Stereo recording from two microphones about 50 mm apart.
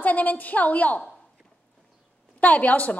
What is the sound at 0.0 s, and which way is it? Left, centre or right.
A woman's voice, left.